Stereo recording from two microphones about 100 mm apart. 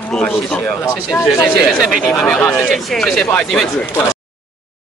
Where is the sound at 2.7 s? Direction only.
Centre (ahead or behind).